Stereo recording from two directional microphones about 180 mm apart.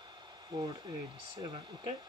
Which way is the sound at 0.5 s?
25° right (ahead or behind).